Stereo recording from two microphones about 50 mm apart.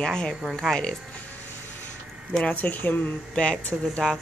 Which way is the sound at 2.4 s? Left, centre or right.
Left.